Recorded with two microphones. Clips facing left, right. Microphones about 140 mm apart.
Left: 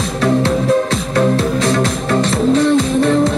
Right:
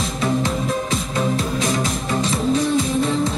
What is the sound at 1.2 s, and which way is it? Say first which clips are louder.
Music: left 8 dB; 65° left (ahead or behind).